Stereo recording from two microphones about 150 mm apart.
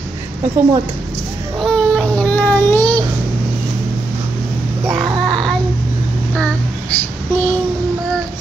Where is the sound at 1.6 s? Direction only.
5° left (ahead or behind).